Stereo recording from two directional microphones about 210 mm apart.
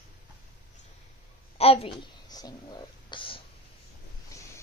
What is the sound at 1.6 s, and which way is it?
Whispering, 30° left (ahead or behind).